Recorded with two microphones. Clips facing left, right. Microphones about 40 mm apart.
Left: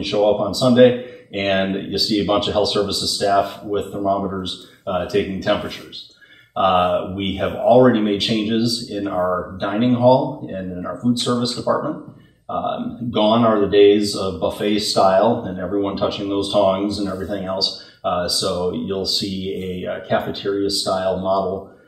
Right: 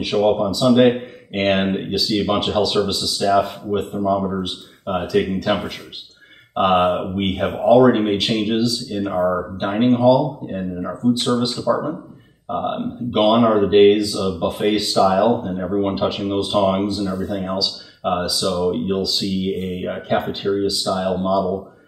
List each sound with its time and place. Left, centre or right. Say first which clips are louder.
0.0 s speech: even; centre
6.8 s speech: even; centre
11.6 s speech: even; centre